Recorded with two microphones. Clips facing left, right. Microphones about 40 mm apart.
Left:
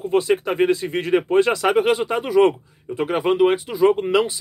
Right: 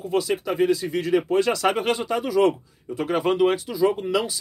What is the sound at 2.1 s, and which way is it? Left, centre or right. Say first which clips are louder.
Speech: left 3 dB; left.